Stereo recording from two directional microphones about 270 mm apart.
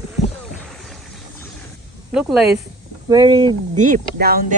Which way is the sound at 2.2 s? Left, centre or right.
Centre.